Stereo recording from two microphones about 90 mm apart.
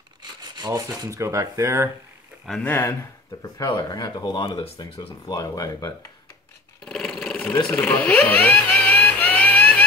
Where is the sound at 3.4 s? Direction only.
40° left (ahead or behind).